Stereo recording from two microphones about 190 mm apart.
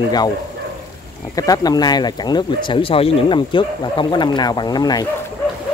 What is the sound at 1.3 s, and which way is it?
Speech, 20° left (ahead or behind).